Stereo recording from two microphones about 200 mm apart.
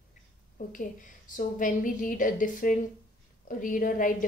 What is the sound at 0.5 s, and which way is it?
A woman's voice, 40° left (ahead or behind).